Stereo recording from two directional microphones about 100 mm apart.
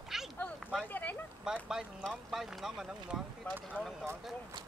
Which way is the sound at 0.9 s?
20° left (ahead or behind).